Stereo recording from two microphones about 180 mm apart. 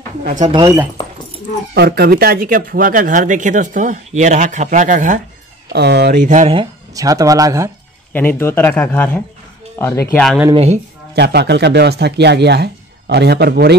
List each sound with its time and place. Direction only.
0.2 s speech: 45° right (ahead or behind)
0.5 s speech: 25° right (ahead or behind)
1.7 s speech: 65° right (ahead or behind); by 5.2 s 45° right (ahead or behind)
5.7 s speech: 65° right (ahead or behind)
6.2 s speech: 45° right (ahead or behind)
6.5 s speech: 25° right (ahead or behind)
8.1 s speech: 10° left (ahead or behind)
10.5 s speech: 35° right (ahead or behind)
11.1 s speech: 65° right (ahead or behind)